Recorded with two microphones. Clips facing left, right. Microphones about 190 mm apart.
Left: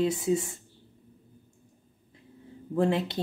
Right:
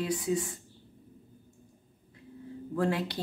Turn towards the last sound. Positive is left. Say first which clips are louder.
# left 4 dB
turn(degrees=25)  # may be behind; listen again after turning